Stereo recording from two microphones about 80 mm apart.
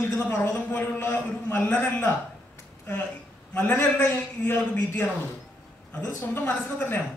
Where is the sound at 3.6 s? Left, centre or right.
Left.